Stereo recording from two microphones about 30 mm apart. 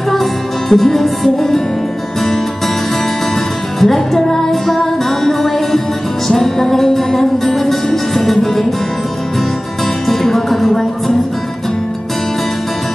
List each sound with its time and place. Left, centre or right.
0.1 s music: centre
3.8 s music: centre
10.0 s music: centre